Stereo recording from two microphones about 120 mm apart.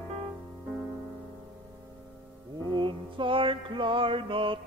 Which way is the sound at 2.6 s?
40° right (ahead or behind).